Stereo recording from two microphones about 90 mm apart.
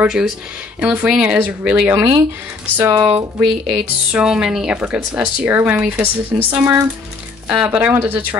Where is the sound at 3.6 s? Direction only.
10° right (ahead or behind).